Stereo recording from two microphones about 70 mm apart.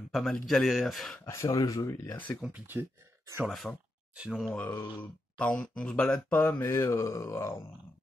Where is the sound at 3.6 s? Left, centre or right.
Left.